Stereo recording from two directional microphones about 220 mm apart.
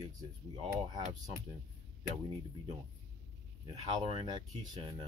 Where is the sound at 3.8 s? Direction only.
25° right (ahead or behind).